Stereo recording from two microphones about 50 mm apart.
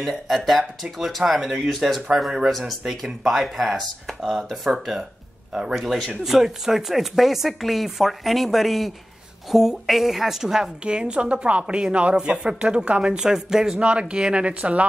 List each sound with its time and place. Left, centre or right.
0.0 s speech: centre
2.0 s speech: centre
5.5 s speech: centre
5.8 s a woman's voice: centre
13.7 s a woman's voice: right